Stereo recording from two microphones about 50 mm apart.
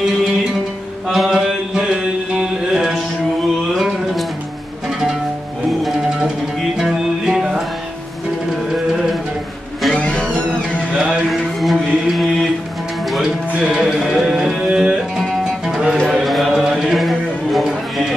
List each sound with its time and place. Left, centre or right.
1.1 s mantra: centre
2.7 s music: centre
6.0 s music: centre
9.9 s music: left
11.6 s mantra: centre
13.8 s music: centre
16.8 s a sound: centre